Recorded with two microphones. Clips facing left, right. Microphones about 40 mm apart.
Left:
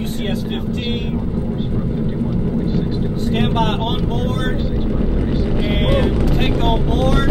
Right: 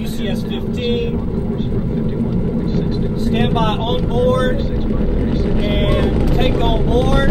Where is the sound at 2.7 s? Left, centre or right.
Centre.